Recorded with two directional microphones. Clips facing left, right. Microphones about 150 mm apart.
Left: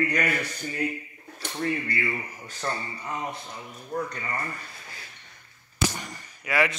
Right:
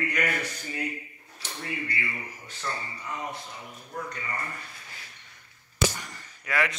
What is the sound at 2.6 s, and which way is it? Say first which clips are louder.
Speech: left 3 dB; 45° left (ahead or behind).